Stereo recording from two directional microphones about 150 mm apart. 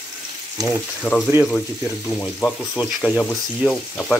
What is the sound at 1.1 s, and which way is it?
Speech, 5° left (ahead or behind).